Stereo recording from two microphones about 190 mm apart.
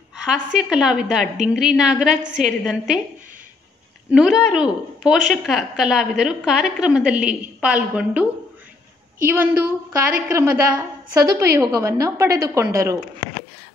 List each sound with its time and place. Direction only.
0.3 s a woman's voice: 5° right (ahead or behind)
4.1 s a woman's voice: centre (ahead or behind)